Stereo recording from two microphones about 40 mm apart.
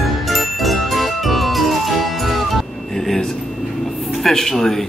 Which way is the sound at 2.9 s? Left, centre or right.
Centre.